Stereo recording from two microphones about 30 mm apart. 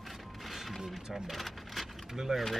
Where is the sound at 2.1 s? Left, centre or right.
Centre.